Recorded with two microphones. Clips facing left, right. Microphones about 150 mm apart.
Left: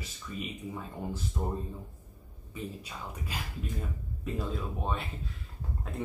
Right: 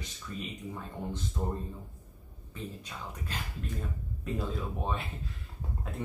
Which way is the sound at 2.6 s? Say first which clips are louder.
Left 1 dB; 10° left (ahead or behind).